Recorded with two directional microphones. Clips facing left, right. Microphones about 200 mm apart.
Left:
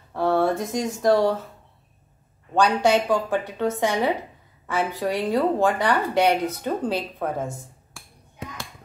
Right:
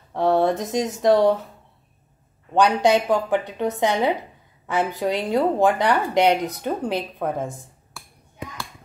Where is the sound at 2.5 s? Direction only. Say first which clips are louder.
Right 2 dB; 20° right (ahead or behind).